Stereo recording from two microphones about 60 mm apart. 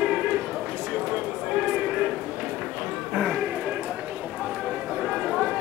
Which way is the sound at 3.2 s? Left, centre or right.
Centre.